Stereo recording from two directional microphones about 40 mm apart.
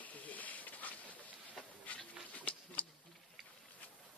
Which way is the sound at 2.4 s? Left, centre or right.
Left.